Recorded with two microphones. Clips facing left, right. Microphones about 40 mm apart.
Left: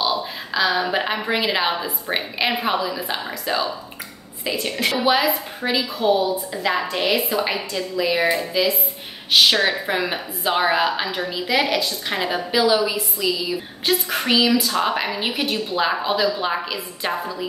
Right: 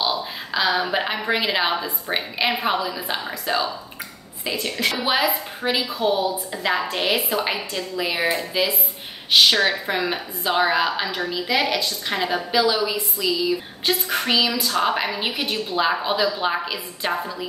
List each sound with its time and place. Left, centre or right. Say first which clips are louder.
0.5 s a woman's voice: left 1 dB; centre
5.0 s a woman's voice: left 4 dB; centre